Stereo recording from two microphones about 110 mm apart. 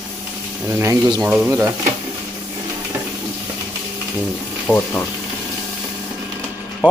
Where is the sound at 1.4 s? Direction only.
15° right (ahead or behind).